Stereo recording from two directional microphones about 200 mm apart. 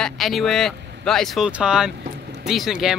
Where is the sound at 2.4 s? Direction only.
Centre (ahead or behind).